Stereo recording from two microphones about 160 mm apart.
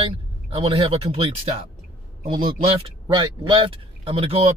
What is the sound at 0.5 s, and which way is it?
Speech, 35° right (ahead or behind).